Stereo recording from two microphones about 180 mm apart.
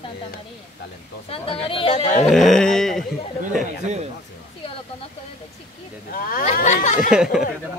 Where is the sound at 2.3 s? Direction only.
Centre (ahead or behind).